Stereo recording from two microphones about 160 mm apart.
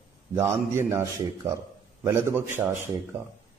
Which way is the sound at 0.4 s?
15° right (ahead or behind).